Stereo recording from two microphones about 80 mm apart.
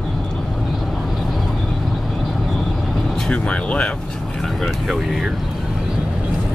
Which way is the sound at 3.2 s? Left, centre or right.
Centre.